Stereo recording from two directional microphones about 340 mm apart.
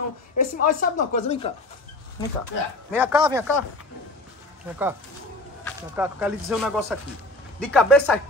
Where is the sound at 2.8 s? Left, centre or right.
Centre.